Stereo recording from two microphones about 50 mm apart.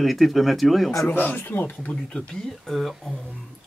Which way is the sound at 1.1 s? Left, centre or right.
Left.